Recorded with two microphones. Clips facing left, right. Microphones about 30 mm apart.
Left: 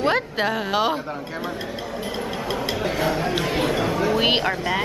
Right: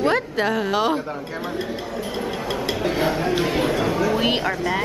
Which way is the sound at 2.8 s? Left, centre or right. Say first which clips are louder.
Right 2 dB; centre.